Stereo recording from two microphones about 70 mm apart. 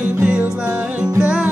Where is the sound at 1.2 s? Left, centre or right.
Centre.